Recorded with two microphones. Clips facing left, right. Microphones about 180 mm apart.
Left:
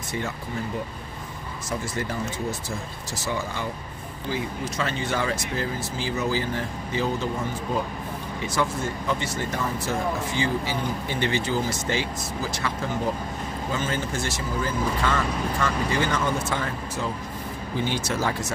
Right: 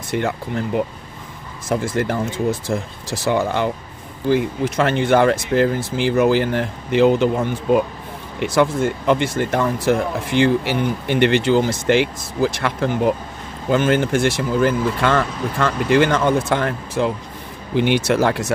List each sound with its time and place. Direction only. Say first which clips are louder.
0.1 s speech: right 9 dB; 65° right (ahead or behind)
1.7 s speech: right 9 dB; 55° right (ahead or behind)
3.3 s speech: right 11 dB; 70° right (ahead or behind)